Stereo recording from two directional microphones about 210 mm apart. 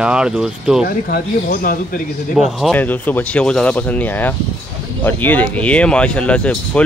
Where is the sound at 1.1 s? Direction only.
40° left (ahead or behind).